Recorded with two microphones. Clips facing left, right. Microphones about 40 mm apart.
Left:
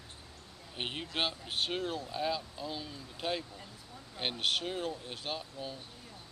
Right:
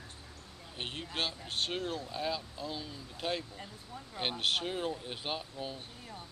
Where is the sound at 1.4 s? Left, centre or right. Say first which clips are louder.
Left 1 dB; centre.